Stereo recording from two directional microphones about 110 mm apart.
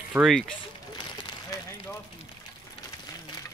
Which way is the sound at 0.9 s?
45° left (ahead or behind).